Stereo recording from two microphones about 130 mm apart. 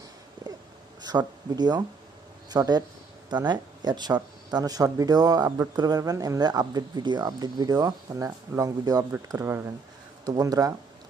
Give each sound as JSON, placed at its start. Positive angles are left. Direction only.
{"t": 1.0, "sound": "speech", "side_deg": -35}